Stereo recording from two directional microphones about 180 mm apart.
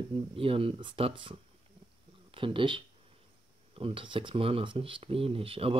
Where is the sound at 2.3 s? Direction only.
30° right (ahead or behind).